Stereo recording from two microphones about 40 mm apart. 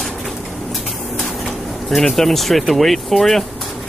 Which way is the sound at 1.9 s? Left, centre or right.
Centre.